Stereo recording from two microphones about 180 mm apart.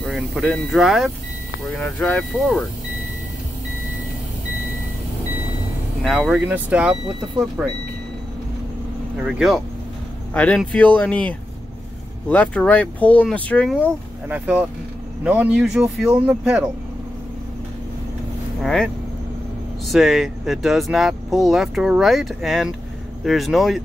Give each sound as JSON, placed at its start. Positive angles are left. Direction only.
{"t": 0.0, "sound": "speech", "side_deg": 0}
{"t": 6.0, "sound": "speech", "side_deg": -5}
{"t": 9.2, "sound": "speech", "side_deg": 0}
{"t": 13.7, "sound": "speech", "side_deg": -10}
{"t": 18.6, "sound": "speech", "side_deg": 0}
{"t": 19.9, "sound": "speech", "side_deg": 0}